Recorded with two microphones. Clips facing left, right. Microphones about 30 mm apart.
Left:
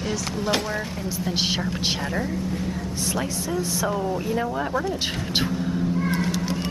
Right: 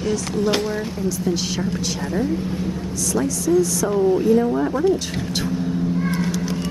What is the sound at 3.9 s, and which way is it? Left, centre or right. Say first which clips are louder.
Speech: right 10 dB; centre.